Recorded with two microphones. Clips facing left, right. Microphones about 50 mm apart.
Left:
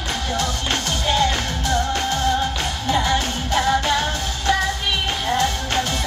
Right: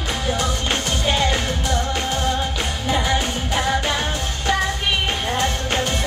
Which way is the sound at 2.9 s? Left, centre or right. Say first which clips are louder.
Left 1 dB; centre.